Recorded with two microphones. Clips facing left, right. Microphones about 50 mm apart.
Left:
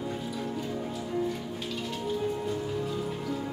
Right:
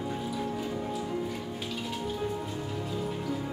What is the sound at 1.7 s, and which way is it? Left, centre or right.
Music, centre.